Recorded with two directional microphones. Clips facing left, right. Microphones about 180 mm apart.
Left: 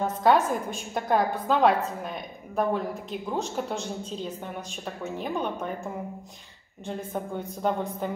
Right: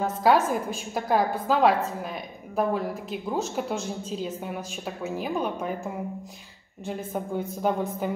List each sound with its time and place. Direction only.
0.0 s a woman's voice: 5° right (ahead or behind)